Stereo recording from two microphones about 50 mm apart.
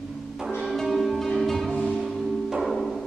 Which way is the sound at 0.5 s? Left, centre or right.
Centre.